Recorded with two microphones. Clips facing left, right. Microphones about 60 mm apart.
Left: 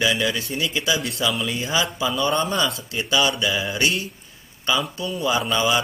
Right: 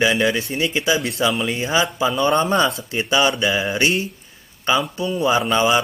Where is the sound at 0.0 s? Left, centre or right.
Right.